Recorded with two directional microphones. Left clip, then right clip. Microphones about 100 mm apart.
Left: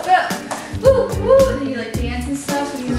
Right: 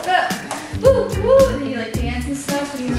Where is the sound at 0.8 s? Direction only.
Centre (ahead or behind).